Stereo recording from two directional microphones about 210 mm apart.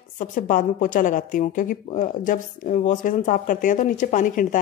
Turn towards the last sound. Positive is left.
turn(degrees=40)  # may be behind; listen again after turning